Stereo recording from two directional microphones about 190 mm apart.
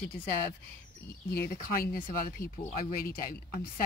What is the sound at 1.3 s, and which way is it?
Speech, 55° left (ahead or behind).